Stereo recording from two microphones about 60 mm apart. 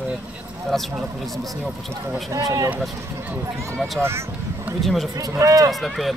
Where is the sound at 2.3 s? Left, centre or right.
Right.